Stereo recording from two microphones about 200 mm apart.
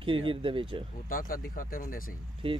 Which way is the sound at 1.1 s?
45° left (ahead or behind).